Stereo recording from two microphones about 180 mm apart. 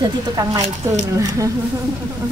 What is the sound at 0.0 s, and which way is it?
Speech, 20° right (ahead or behind).